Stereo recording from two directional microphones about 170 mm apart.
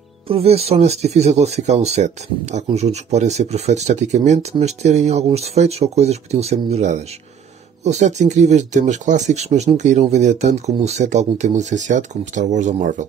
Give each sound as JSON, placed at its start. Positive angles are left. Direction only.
{"t": 0.3, "sound": "speech", "side_deg": -35}